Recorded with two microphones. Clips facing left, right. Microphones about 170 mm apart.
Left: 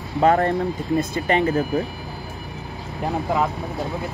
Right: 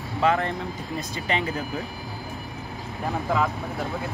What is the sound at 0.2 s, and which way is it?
Speech, 45° left (ahead or behind).